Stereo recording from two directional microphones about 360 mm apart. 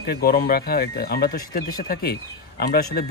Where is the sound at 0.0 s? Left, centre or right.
Left.